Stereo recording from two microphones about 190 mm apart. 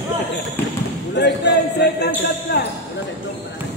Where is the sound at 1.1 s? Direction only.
65° left (ahead or behind).